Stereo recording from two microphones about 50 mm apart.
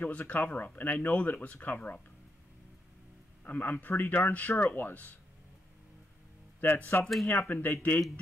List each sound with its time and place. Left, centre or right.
0.0 s speech: left
3.4 s speech: left
6.9 s speech: left